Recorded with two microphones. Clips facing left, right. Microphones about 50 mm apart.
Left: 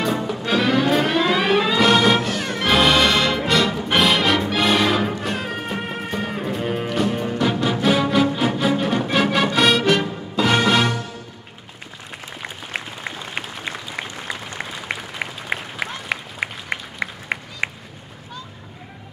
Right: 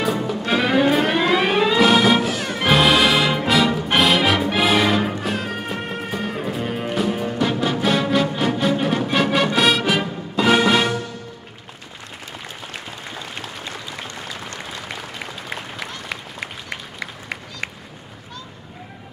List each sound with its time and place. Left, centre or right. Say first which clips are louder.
0.0 s music: right 1 dB; centre
0.6 s music: right 1 dB; centre
14.9 s applause: left 3 dB; left